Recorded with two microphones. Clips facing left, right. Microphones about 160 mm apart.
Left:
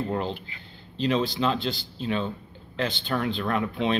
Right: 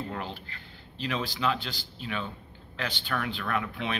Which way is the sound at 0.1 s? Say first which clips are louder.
Left 8 dB; 25° left (ahead or behind).